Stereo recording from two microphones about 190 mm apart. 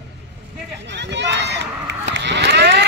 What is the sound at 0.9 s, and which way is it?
Run, 65° right (ahead or behind).